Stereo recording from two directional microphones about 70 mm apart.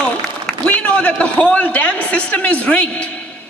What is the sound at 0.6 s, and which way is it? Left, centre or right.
A woman's voice, centre.